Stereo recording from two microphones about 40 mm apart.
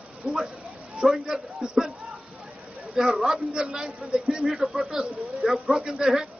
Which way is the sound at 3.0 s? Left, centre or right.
Centre.